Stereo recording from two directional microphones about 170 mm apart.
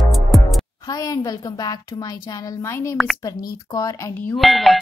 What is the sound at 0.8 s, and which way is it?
Speech, 20° left (ahead or behind).